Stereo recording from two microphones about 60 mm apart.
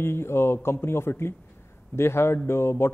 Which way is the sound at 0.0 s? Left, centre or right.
Left.